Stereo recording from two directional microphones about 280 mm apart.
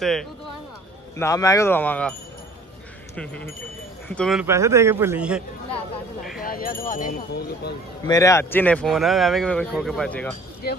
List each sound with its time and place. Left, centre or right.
0.0 s speech: centre
3.2 s a man's voice: centre
6.4 s speech: left
8.1 s speech: centre